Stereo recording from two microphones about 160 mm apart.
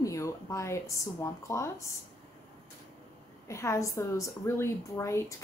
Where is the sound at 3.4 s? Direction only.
15° left (ahead or behind).